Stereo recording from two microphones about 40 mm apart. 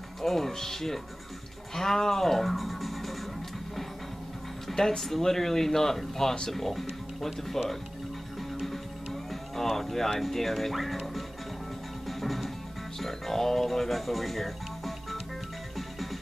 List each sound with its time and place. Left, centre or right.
0.2 s speech: centre
4.6 s speech: centre
8.5 s music: centre
12.1 s music: centre
13.0 s speech: centre